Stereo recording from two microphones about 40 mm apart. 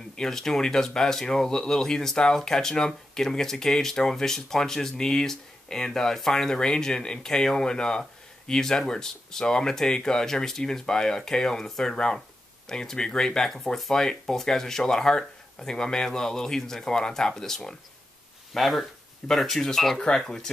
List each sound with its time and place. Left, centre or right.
0.1 s speech: centre
18.5 s speech: centre